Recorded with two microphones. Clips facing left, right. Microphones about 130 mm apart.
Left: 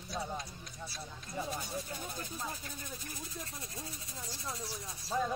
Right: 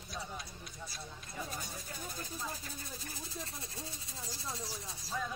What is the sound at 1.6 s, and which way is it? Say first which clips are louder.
Speech: left 5 dB; 40° left (ahead or behind).